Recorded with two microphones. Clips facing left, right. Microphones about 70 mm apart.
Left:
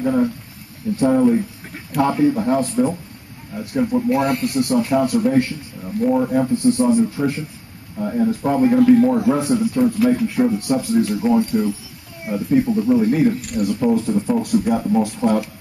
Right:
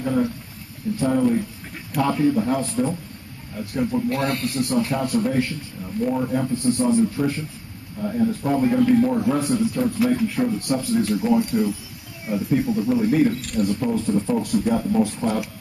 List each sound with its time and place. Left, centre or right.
0.0 s a man's voice: centre
8.0 s a man's voice: centre
11.4 s a man's voice: centre